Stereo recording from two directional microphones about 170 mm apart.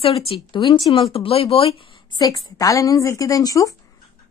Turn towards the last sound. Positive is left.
turn(degrees=20)  # may be behind; listen again after turning